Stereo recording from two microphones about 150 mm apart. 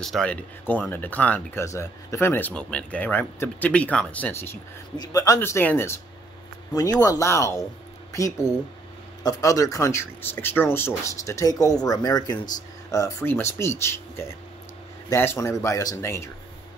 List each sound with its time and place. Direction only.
0.0 s speech: 5° left (ahead or behind); by 16.3 s 20° left (ahead or behind)